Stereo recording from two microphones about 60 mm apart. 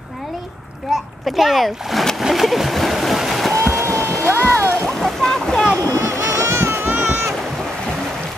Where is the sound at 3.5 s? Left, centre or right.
Right.